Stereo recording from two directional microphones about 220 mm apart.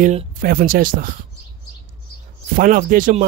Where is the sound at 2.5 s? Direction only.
40° right (ahead or behind).